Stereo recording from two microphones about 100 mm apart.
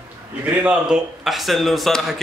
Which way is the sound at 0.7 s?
5° right (ahead or behind).